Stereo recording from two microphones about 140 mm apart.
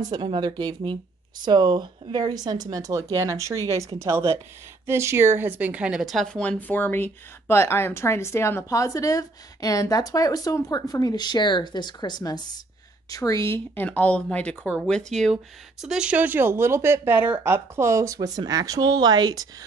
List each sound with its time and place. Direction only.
0.1 s a woman's voice: 35° right (ahead or behind)